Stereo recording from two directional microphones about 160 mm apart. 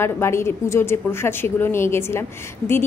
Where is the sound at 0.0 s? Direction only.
15° left (ahead or behind).